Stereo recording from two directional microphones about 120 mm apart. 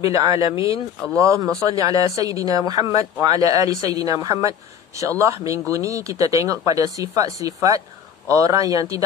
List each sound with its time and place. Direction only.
0.0 s speech: 30° right (ahead or behind)